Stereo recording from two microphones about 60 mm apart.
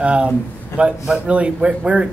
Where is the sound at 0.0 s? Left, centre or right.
Right.